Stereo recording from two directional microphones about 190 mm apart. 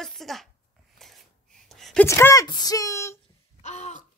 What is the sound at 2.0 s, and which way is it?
Speech, 15° left (ahead or behind).